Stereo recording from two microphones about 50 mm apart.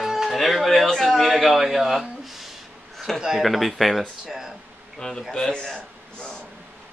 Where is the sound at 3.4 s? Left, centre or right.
Centre.